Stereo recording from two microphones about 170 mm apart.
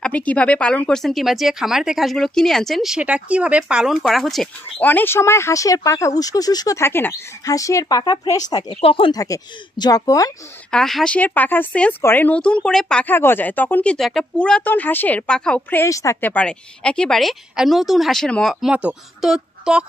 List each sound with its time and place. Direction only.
0.0 s speech: 10° left (ahead or behind)
8.6 s speech: 30° left (ahead or behind)
9.2 s speech: 20° left (ahead or behind)
10.7 s speech: centre (ahead or behind)